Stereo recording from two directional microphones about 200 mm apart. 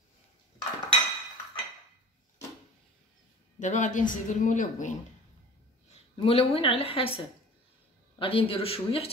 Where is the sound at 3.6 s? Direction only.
40° left (ahead or behind).